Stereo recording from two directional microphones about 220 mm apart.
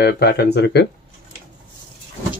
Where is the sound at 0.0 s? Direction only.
45° left (ahead or behind).